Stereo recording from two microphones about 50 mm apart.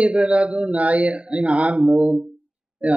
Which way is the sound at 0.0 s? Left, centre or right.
Centre.